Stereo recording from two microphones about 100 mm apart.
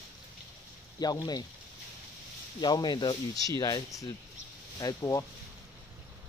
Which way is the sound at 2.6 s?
45° left (ahead or behind).